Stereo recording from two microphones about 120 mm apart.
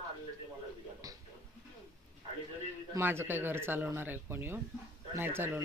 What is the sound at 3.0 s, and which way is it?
Speech, 20° right (ahead or behind).